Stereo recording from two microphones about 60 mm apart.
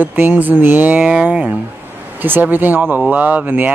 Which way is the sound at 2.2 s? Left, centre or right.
Right.